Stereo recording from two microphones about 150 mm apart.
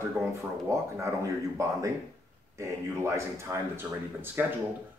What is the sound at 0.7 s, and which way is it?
Speech, 20° right (ahead or behind).